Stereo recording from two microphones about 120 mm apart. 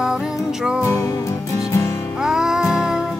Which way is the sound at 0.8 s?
25° left (ahead or behind).